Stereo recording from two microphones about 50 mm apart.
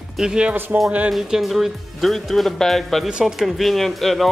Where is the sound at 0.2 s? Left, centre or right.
Centre.